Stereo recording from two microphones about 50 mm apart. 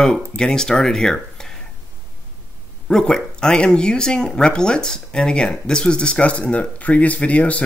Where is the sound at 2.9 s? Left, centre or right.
Centre.